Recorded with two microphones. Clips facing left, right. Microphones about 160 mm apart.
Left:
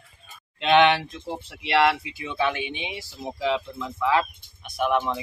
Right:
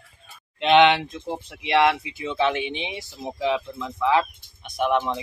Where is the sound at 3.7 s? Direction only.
5° left (ahead or behind).